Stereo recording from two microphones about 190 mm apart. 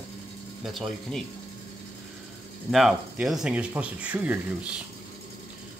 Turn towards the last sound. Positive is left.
turn(degrees=-10)  # may be behind; listen again after turning